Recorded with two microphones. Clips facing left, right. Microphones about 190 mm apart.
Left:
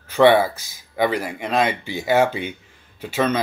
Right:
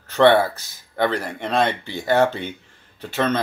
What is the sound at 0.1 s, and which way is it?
Speech, 10° left (ahead or behind).